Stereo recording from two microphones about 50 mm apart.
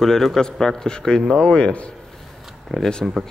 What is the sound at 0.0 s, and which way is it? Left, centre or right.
A man's voice, centre.